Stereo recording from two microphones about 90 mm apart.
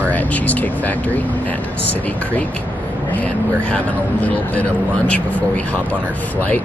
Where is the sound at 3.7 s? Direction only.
15° left (ahead or behind).